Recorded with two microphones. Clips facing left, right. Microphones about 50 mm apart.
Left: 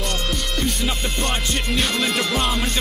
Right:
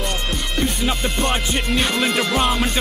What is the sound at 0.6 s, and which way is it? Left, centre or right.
Music, centre.